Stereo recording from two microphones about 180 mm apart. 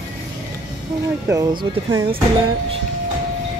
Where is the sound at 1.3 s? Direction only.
20° right (ahead or behind).